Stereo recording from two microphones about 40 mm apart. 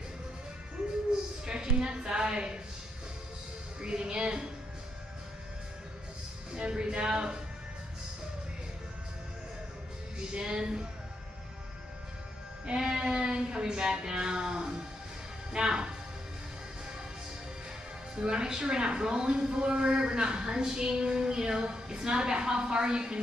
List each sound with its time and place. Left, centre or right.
1.4 s a woman's voice: right
3.8 s speech: centre
6.5 s speech: right
10.1 s speech: right
12.6 s music: centre
13.1 s speech: right
18.1 s speech: right